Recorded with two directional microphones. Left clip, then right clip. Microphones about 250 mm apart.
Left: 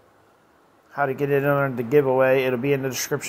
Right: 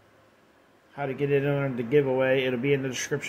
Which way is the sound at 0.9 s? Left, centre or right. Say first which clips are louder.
Left 5 dB; centre.